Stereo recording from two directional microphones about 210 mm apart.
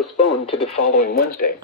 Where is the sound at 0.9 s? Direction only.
45° left (ahead or behind).